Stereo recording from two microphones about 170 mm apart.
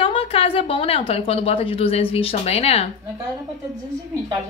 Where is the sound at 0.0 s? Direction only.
35° left (ahead or behind).